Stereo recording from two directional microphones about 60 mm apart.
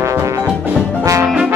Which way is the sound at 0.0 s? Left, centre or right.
Right.